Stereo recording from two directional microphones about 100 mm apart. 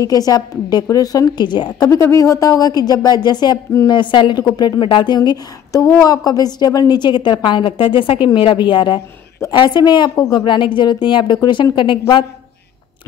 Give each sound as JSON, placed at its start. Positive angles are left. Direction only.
{"t": 0.0, "sound": "speech", "side_deg": 40}
{"t": 2.0, "sound": "a woman's voice", "side_deg": 30}